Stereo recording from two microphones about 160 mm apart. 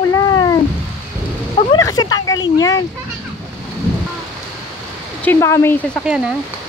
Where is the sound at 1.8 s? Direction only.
25° left (ahead or behind).